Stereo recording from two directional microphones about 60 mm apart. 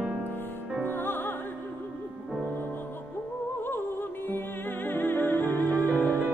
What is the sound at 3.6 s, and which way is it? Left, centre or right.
Music, left.